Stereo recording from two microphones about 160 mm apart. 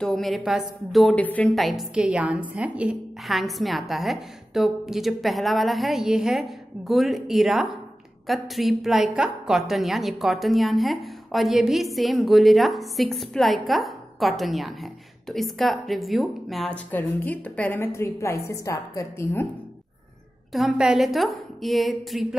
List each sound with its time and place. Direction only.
0.0 s a woman's voice: centre (ahead or behind); by 19.4 s 20° left (ahead or behind)
20.5 s a woman's voice: 5° right (ahead or behind)